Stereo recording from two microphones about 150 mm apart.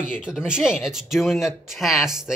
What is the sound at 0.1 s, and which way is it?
Speech, 5° right (ahead or behind).